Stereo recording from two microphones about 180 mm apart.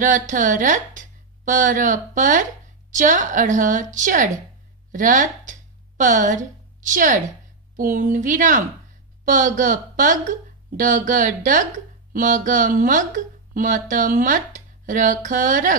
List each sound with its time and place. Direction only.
0.0 s speech: 45° right (ahead or behind)
4.9 s a sound: 45° right (ahead or behind)
7.7 s speech: 45° right (ahead or behind)